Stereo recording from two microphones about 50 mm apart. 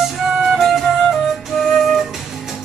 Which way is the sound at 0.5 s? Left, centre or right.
Centre.